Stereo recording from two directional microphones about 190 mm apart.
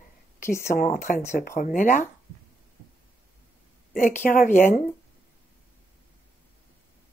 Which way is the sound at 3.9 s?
45° left (ahead or behind).